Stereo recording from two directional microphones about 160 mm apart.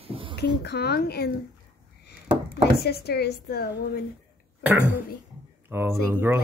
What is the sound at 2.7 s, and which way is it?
Speech, 80° left.